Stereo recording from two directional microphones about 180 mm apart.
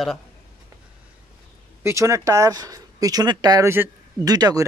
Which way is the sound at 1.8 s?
15° right (ahead or behind).